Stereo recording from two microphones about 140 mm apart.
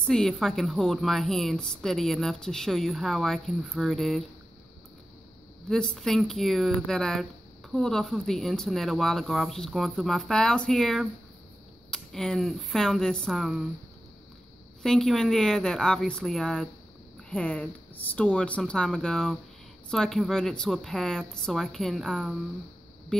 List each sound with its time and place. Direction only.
0.0 s a woman's voice: 5° left (ahead or behind)
5.7 s a woman's voice: 5° left (ahead or behind)
14.8 s a woman's voice: centre (ahead or behind)